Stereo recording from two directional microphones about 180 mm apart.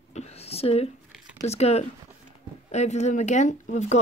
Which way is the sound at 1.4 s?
35° left (ahead or behind).